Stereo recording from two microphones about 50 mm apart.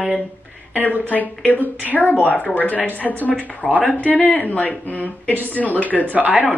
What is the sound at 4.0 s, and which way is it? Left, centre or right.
Speech, left.